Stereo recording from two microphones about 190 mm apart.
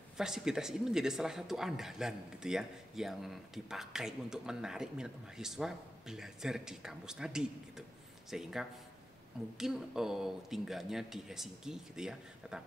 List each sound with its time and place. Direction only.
0.2 s speech: 5° right (ahead or behind)